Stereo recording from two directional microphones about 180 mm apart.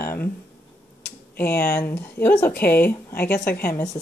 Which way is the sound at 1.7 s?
15° left (ahead or behind).